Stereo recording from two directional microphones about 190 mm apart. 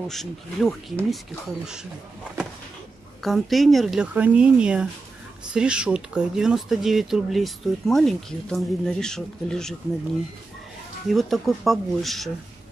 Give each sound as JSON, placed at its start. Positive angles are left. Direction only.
{"t": 0.1, "sound": "speech", "side_deg": 0}
{"t": 3.2, "sound": "speech", "side_deg": 0}
{"t": 11.1, "sound": "speech", "side_deg": 0}